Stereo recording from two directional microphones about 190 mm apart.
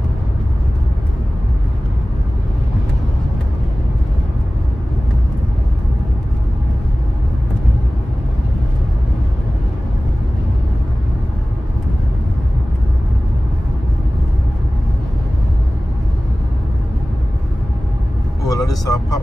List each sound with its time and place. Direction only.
18.4 s vehicle: 20° left (ahead or behind)